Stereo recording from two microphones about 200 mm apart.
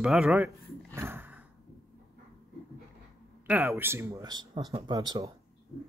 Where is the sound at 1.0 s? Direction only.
10° right (ahead or behind).